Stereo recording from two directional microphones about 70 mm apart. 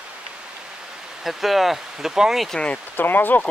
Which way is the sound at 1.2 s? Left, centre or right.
Centre.